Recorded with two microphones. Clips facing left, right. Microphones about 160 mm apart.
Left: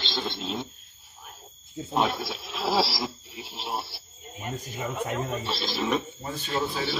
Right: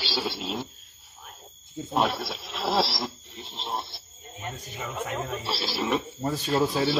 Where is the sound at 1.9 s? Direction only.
Centre (ahead or behind).